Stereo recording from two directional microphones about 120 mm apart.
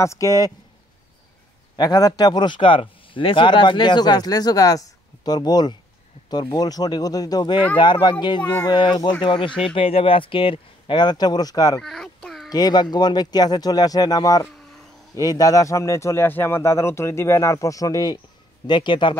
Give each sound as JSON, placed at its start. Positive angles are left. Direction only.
{"t": 0.0, "sound": "speech", "side_deg": 25}
{"t": 1.8, "sound": "speech", "side_deg": 30}
{"t": 8.4, "sound": "speech", "side_deg": 10}
{"t": 8.6, "sound": "speech", "side_deg": 40}
{"t": 11.8, "sound": "a sound", "side_deg": 5}
{"t": 12.4, "sound": "speech", "side_deg": 35}